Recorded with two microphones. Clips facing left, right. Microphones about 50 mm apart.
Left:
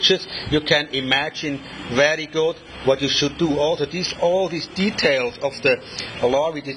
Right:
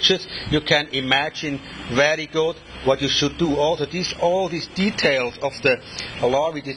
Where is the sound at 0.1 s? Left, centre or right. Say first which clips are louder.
Left 1 dB; centre.